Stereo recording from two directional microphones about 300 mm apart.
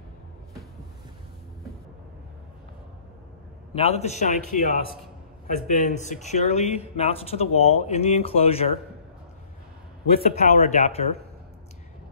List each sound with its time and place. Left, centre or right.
3.7 s speech: centre
10.1 s speech: left